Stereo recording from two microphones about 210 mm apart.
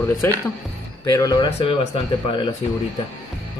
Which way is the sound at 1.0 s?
20° left (ahead or behind).